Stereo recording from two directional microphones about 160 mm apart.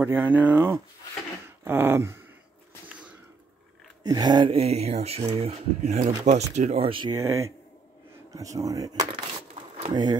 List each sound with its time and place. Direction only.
0.0 s speech: 10° right (ahead or behind)
2.9 s a sound: 5° right (ahead or behind)
4.0 s speech: 25° right (ahead or behind)
7.2 s speech: 20° right (ahead or behind)